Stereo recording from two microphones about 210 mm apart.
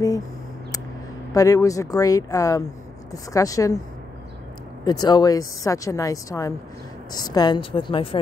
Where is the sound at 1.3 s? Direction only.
15° left (ahead or behind).